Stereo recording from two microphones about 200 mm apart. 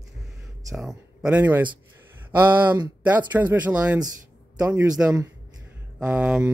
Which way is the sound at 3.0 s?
10° right (ahead or behind).